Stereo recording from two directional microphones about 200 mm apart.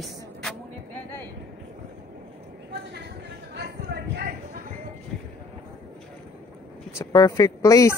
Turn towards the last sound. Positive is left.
turn(degrees=15)  # may be behind; listen again after turning